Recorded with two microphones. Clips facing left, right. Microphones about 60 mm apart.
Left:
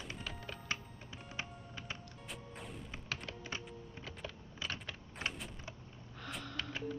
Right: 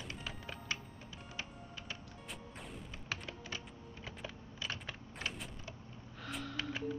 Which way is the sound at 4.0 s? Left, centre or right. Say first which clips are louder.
Right 1 dB; centre.